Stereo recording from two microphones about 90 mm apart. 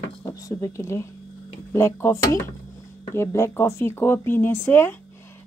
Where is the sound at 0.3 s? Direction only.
40° left (ahead or behind).